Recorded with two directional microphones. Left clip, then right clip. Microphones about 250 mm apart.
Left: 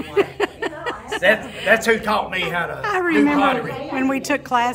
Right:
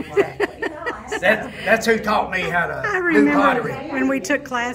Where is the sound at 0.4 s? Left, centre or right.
Centre.